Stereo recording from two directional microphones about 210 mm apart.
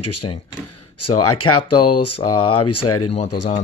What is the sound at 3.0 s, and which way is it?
Speech, 30° left (ahead or behind).